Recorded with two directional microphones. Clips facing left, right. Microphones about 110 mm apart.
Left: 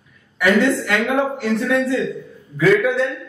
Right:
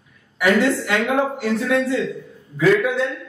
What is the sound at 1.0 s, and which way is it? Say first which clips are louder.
Speech: even; 10° right (ahead or behind).